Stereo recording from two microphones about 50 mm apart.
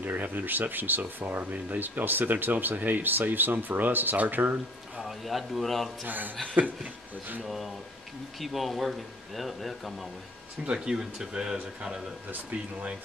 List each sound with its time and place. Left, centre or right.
0.0 s speech: right
4.9 s speech: centre
6.0 s speech: right
7.4 s speech: centre
10.6 s speech: centre